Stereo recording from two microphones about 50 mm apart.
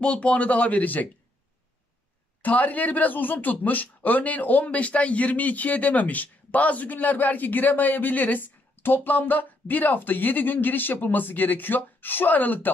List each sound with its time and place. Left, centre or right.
0.0 s speech: left
2.4 s speech: left